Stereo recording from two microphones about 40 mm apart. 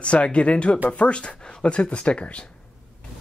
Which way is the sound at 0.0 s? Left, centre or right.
Left.